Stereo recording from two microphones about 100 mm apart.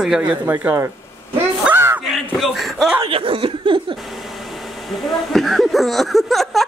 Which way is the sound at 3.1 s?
65° right (ahead or behind).